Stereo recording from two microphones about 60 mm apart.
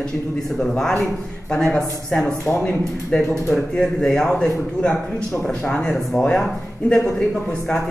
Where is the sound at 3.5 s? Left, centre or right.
Centre.